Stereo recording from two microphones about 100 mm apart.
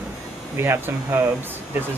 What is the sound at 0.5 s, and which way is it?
Speech, 25° right (ahead or behind).